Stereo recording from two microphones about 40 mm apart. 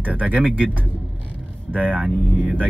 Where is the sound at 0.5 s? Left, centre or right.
Right.